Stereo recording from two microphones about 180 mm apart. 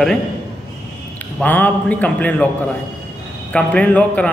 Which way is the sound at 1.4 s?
10° left (ahead or behind).